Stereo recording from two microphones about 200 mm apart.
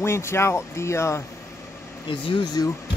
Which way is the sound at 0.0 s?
15° left (ahead or behind).